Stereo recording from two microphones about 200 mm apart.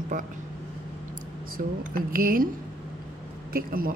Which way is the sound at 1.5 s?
45° right (ahead or behind).